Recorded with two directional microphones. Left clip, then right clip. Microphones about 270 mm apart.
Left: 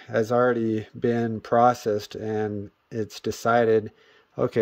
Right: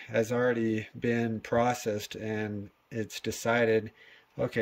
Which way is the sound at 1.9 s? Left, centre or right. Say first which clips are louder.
Left 7 dB; centre.